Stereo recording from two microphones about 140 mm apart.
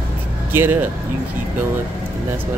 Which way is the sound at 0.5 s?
15° right (ahead or behind).